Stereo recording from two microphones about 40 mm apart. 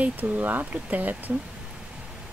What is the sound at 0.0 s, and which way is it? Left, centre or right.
Speech, right.